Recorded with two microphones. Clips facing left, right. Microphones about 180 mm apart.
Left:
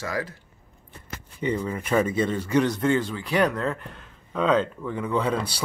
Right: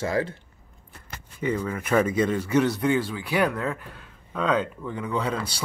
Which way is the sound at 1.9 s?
15° left (ahead or behind).